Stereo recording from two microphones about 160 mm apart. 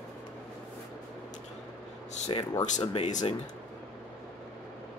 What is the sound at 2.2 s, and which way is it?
Speech, 25° left (ahead or behind).